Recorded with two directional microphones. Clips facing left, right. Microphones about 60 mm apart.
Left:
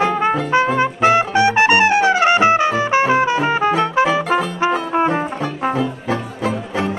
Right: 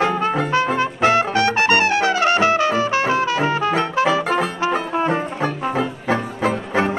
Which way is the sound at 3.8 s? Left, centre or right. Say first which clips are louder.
Left 2 dB; centre.